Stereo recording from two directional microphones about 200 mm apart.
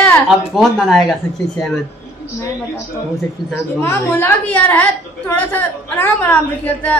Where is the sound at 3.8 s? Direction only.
10° left (ahead or behind).